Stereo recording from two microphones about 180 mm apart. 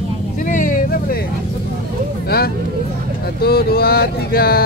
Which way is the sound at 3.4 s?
60° left (ahead or behind).